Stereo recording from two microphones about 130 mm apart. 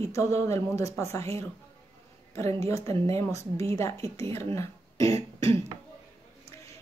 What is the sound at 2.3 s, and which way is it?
A woman's voice, 25° left (ahead or behind).